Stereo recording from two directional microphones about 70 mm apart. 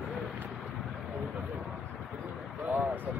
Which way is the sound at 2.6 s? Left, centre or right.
Right.